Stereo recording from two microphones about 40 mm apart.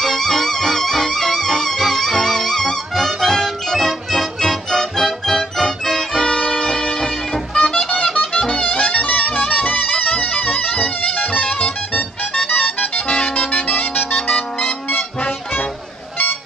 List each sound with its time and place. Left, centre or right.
0.0 s music: centre
6.3 s music: left
6.6 s music: centre; by 15.0 s left